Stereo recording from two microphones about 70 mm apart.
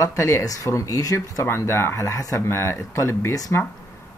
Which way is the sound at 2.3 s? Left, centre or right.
Left.